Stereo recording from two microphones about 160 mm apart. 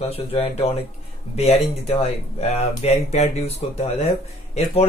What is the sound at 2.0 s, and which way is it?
Speech, 40° left (ahead or behind).